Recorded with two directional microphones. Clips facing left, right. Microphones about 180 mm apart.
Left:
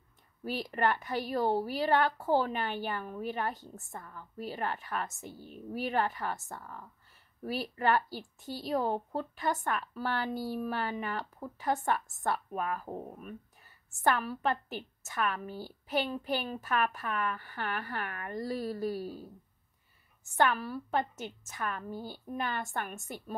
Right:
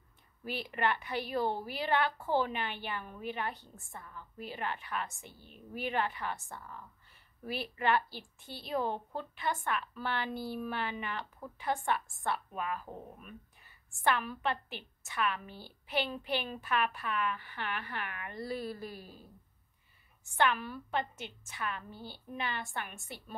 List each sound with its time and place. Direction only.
0.4 s speech: 40° left (ahead or behind)
20.2 s a woman's voice: 40° left (ahead or behind)